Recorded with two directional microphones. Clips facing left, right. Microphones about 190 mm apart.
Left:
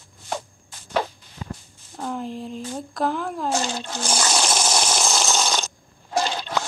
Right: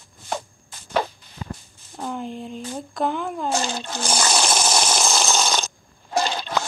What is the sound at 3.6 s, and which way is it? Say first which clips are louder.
Water: even; 60° right (ahead or behind).